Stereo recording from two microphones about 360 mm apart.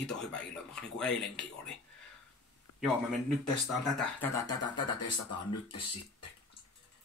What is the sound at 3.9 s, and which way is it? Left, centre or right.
Speech, centre.